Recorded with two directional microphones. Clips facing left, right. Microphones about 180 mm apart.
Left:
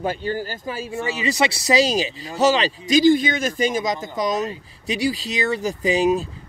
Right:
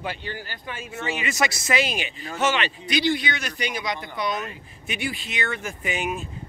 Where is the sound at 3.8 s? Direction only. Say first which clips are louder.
Left 6 dB; 40° left (ahead or behind).